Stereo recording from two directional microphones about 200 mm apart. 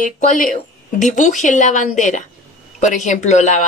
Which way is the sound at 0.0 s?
40° left (ahead or behind).